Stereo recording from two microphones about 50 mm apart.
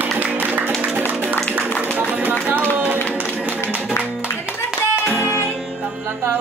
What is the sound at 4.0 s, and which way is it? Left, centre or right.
Music, right.